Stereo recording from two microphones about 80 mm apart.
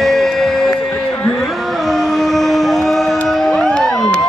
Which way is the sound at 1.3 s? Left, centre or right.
Centre.